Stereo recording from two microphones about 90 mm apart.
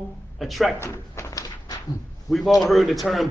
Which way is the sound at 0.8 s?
30° left (ahead or behind).